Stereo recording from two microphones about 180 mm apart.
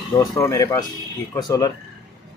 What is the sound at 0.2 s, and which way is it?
Speech, 15° left (ahead or behind).